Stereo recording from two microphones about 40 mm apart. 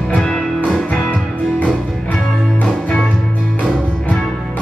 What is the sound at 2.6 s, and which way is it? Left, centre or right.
Music, centre.